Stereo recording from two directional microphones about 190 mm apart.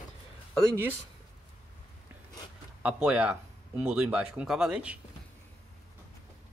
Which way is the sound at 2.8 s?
5° right (ahead or behind).